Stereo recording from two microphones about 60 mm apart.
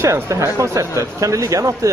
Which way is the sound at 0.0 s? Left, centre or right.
Right.